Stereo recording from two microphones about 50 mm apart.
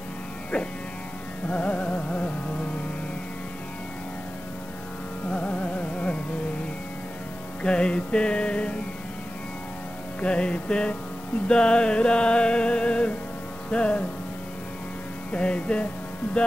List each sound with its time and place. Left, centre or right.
1.5 s music: left
5.3 s carnatic music: left
7.6 s music: left
10.2 s music: left
15.3 s music: left